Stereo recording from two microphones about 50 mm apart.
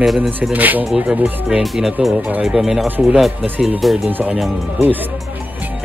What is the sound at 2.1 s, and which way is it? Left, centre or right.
Speech, right.